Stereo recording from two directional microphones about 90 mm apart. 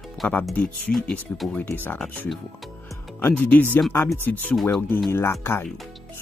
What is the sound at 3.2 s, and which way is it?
Speech, 20° left (ahead or behind).